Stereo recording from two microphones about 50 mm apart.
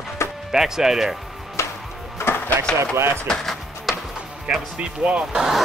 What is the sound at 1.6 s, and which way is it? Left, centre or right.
Music, left.